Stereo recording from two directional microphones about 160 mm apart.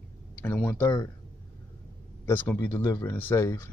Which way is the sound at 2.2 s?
15° left (ahead or behind).